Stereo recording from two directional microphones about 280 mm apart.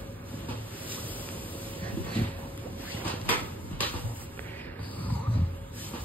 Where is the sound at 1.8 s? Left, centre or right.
Centre.